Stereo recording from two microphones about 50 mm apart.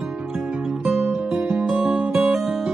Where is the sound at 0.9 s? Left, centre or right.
Centre.